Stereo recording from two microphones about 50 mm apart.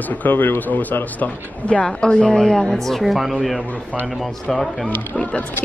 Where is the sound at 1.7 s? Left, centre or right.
Left; by 4.8 s centre.